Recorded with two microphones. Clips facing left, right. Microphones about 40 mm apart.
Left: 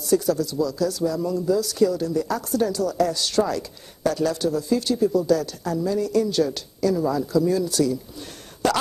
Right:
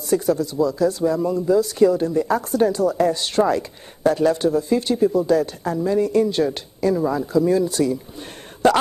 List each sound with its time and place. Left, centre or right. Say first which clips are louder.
0.0 s speech: right 1 dB; right